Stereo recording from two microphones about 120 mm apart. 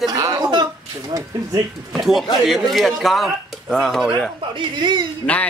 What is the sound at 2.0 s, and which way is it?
A man's voice, centre (ahead or behind).